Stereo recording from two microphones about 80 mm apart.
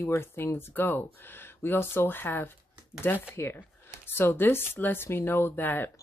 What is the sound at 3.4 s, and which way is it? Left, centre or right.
A woman's voice, left.